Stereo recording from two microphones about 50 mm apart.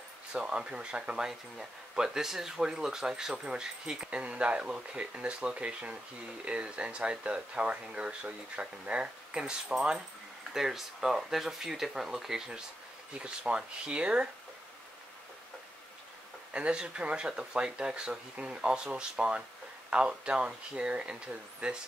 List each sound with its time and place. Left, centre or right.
0.3 s speech: centre
13.1 s speech: right
16.5 s speech: right